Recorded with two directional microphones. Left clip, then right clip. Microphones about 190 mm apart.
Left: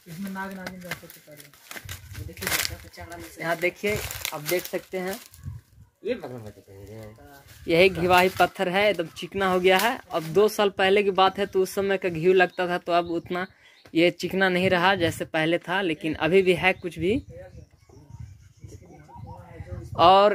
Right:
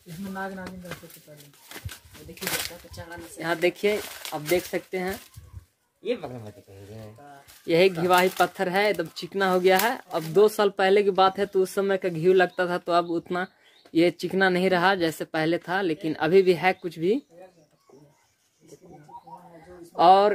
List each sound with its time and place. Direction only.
3.3 s speech: 35° right (ahead or behind)
7.6 s speech: centre (ahead or behind)
10.1 s speech: 20° right (ahead or behind)
20.0 s speech: 15° right (ahead or behind)